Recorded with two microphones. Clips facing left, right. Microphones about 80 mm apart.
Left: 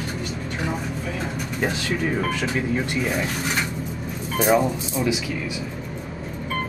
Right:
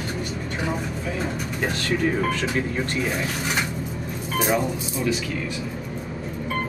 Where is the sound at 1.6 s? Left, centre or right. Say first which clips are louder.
Even; centre.